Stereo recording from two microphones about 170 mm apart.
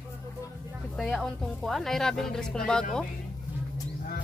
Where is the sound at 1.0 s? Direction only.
Centre (ahead or behind).